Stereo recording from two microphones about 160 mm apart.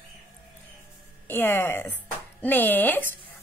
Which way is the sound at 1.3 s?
15° left (ahead or behind).